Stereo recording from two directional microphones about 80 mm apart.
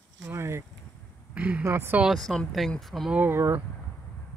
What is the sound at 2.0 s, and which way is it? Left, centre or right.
Speech, centre.